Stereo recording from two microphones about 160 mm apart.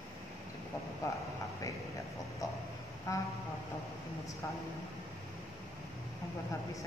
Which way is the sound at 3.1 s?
20° left (ahead or behind).